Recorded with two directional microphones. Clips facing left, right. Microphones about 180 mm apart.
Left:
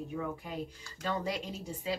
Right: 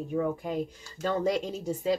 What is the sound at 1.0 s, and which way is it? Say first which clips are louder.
Speech: right 7 dB; 45° right (ahead or behind).